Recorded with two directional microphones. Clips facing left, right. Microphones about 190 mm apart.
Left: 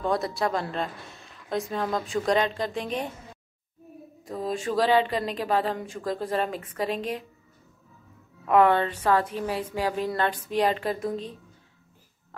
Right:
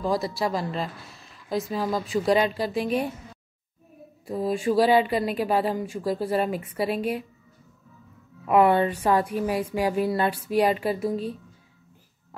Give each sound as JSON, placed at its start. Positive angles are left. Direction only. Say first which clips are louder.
{"t": 0.0, "sound": "speech", "louder": "right 1 dB", "side_deg": 0}
{"t": 4.3, "sound": "speech", "louder": "right 4 dB", "side_deg": -10}
{"t": 8.5, "sound": "speech", "louder": "right 1 dB", "side_deg": -10}